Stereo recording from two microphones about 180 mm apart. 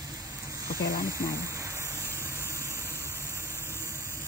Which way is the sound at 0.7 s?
55° left (ahead or behind).